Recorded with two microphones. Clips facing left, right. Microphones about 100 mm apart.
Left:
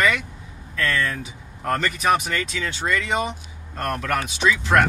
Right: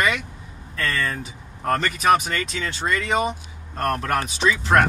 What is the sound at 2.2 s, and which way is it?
Speech, 40° right (ahead or behind).